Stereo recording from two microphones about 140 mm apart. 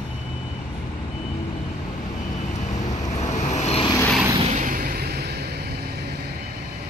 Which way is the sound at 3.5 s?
50° left (ahead or behind).